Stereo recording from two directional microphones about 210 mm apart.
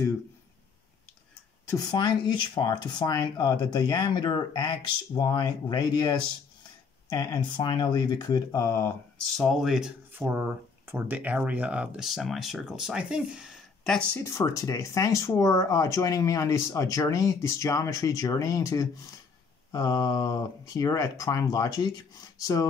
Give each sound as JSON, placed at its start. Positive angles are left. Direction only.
{"t": 1.7, "sound": "speech", "side_deg": 20}